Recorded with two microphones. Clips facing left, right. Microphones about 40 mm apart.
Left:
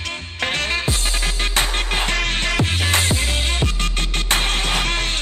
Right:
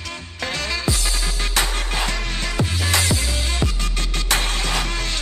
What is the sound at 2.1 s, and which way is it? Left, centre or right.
Music, left.